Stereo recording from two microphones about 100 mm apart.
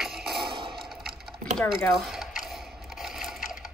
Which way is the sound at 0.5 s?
55° right (ahead or behind).